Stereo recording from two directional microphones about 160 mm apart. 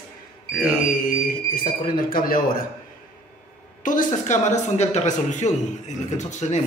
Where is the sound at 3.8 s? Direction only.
55° left (ahead or behind).